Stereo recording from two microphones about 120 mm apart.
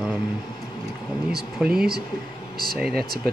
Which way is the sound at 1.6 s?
5° right (ahead or behind).